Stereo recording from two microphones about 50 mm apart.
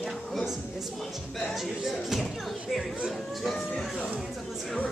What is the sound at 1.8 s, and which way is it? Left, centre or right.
A child's voice, centre.